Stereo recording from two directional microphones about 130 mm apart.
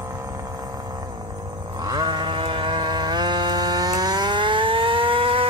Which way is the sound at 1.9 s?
35° right (ahead or behind).